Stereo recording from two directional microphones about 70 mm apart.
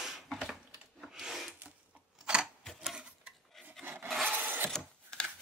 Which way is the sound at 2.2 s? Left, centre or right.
Centre.